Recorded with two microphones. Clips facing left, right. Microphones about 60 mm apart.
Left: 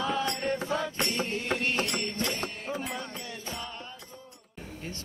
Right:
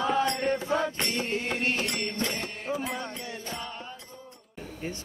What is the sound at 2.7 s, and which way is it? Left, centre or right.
Music, centre.